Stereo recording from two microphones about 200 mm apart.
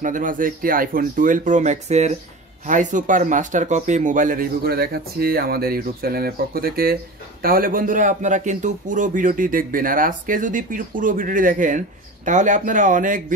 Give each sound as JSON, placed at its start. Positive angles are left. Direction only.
{"t": 0.0, "sound": "speech", "side_deg": -40}